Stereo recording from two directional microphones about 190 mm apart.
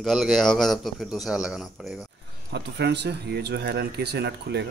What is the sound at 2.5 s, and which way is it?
Speech, 60° right (ahead or behind).